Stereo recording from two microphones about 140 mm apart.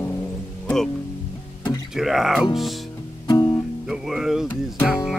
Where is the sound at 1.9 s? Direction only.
Centre (ahead or behind).